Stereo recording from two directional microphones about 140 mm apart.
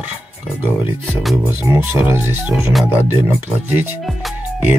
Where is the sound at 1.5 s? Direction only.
15° right (ahead or behind).